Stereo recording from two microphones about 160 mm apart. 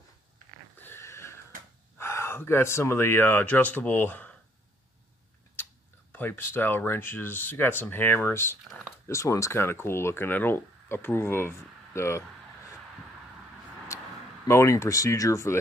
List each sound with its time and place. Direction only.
0.7 s a sound: 15° left (ahead or behind)
2.0 s speech: 15° left (ahead or behind)
6.1 s speech: 10° left (ahead or behind)
8.6 s speech: centre (ahead or behind)
9.0 s speech: 20° left (ahead or behind)
13.9 s a sound: 20° left (ahead or behind)
14.5 s speech: 20° left (ahead or behind)